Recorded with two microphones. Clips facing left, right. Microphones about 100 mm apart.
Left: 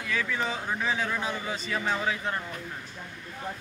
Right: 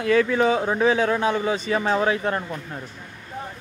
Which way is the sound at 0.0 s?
55° right (ahead or behind).